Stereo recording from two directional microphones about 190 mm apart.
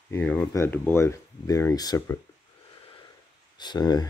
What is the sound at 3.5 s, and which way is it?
Speech, 20° left (ahead or behind).